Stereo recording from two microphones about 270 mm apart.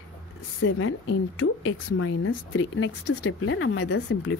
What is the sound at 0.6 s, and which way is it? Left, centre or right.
A woman's voice, left.